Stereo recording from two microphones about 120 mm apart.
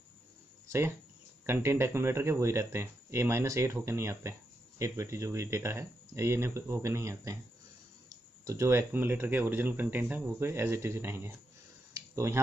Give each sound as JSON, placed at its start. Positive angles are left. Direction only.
{"t": 0.7, "sound": "speech", "side_deg": -20}
{"t": 8.5, "sound": "speech", "side_deg": -25}
{"t": 11.9, "sound": "tick-tock", "side_deg": -25}